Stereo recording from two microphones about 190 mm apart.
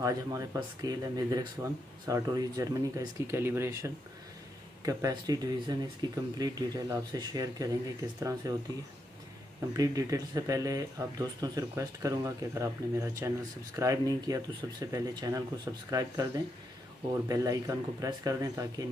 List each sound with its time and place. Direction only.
0.0 s speech: 15° right (ahead or behind)
9.8 s speech: 20° right (ahead or behind)
17.3 s speech: 20° right (ahead or behind)